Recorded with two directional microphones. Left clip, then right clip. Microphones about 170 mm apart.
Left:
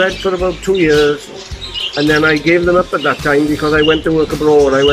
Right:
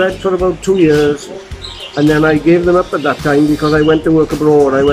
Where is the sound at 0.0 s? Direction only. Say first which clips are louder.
Right 1 dB; 5° right (ahead or behind).